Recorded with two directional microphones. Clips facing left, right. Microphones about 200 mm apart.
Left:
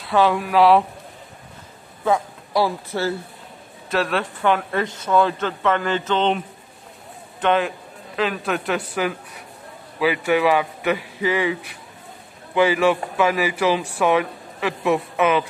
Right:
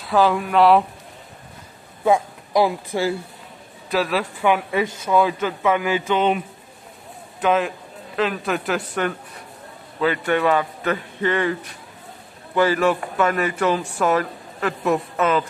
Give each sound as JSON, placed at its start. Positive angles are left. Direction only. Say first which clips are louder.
{"t": 0.0, "sound": "a woman's voice", "louder": "even", "side_deg": 0}
{"t": 2.1, "sound": "speech", "louder": "right 2 dB", "side_deg": -15}
{"t": 3.9, "sound": "a woman's voice", "louder": "right 1 dB", "side_deg": -5}